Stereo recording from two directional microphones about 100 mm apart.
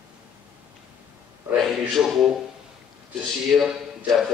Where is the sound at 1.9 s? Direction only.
5° right (ahead or behind).